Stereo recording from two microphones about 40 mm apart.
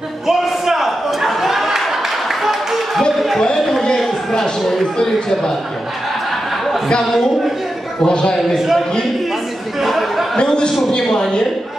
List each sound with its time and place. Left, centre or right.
0.3 s a sound: centre
3.3 s a sound: centre
4.3 s speech: centre
7.1 s speech: centre
8.0 s a man's voice: left
8.5 s speech: centre
9.8 s chatter: centre
10.3 s a man's voice: left